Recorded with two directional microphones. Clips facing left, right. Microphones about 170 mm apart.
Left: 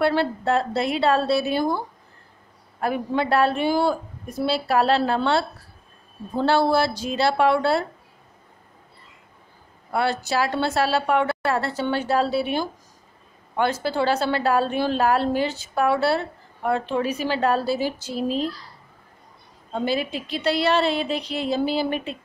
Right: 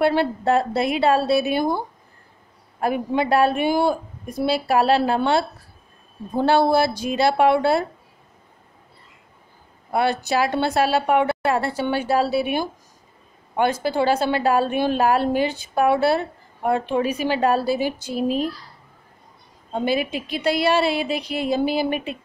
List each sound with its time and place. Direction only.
0.0 s a woman's voice: 15° right (ahead or behind)
9.8 s a woman's voice: 15° right (ahead or behind)
13.8 s a woman's voice: 15° right (ahead or behind)
19.7 s a woman's voice: 15° right (ahead or behind)